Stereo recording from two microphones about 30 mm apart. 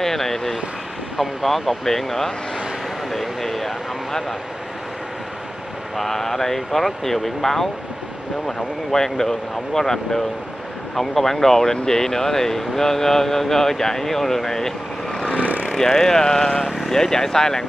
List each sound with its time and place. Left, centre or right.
0.0 s vehicle: centre
1.4 s speech: centre
3.1 s a sound: centre
5.9 s speech: centre
8.9 s speech: centre
15.8 s speech: centre